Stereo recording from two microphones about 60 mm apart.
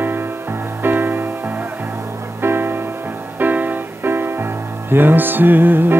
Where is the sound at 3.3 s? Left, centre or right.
Right.